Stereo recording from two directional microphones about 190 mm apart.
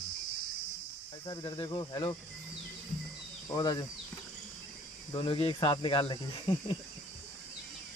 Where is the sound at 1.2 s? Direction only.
25° left (ahead or behind).